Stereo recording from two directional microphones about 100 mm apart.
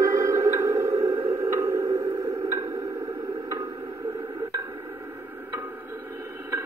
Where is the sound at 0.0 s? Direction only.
30° right (ahead or behind).